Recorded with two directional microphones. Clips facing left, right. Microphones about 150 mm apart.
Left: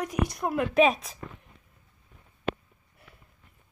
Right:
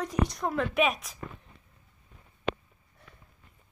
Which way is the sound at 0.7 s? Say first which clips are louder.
Left 9 dB; 30° left (ahead or behind).